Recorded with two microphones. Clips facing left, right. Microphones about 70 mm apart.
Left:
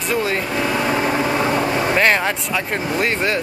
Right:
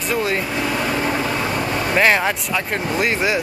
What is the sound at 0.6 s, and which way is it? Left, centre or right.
Vehicle, centre.